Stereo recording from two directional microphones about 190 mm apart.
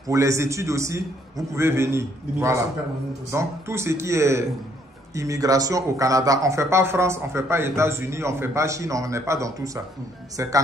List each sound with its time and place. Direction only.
0.1 s speech: 15° right (ahead or behind)